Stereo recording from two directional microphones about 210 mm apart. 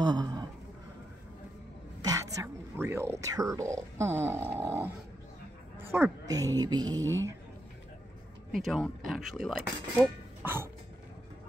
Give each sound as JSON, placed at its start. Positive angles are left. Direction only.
{"t": 0.0, "sound": "a sound", "side_deg": -20}
{"t": 2.0, "sound": "speech", "side_deg": -15}
{"t": 5.9, "sound": "a woman's voice", "side_deg": -10}
{"t": 8.5, "sound": "speech", "side_deg": 0}